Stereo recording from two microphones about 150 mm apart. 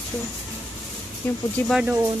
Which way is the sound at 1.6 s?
5° right (ahead or behind).